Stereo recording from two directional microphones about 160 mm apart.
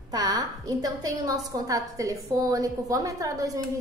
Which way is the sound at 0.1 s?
25° right (ahead or behind).